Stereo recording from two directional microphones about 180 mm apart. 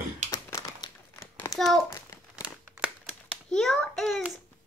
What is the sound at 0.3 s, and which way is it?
Crumpling, 20° left (ahead or behind).